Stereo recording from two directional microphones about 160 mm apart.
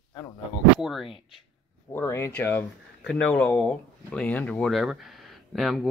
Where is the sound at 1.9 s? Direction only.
15° left (ahead or behind).